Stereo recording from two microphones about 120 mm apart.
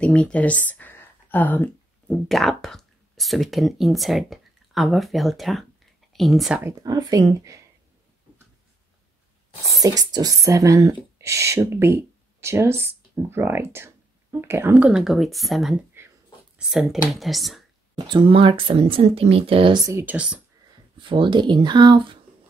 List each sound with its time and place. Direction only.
0.0 s a sound: 10° left (ahead or behind)
2.2 s speech: centre (ahead or behind)
6.8 s speech: 30° right (ahead or behind)
9.7 s speech: 30° right (ahead or behind); by 15.7 s centre (ahead or behind)
16.0 s a sound: 20° right (ahead or behind)
16.5 s speech: 5° right (ahead or behind)
17.9 s speech: 40° right (ahead or behind)
19.9 s speech: 20° right (ahead or behind)
20.2 s speech: 10° right (ahead or behind)
21.0 s speech: 45° right (ahead or behind)